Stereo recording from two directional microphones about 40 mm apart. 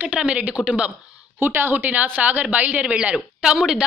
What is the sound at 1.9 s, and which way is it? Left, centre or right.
A woman's voice, right.